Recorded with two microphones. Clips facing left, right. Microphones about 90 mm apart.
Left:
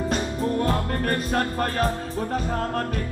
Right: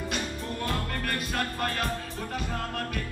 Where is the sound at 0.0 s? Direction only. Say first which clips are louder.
Left 8 dB; 35° left (ahead or behind).